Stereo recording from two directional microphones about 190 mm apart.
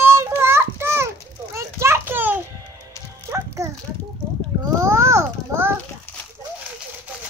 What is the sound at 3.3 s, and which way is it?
Music, 15° right (ahead or behind).